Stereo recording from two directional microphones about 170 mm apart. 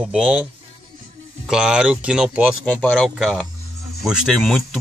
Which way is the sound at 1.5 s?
5° right (ahead or behind).